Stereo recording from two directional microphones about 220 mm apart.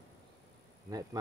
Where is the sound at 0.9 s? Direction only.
15° right (ahead or behind).